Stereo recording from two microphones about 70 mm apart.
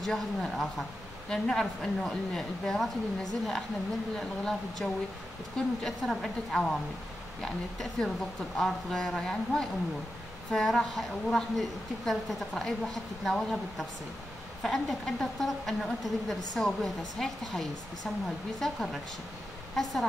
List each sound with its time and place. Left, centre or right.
0.0 s a woman's voice: centre
5.9 s a woman's voice: centre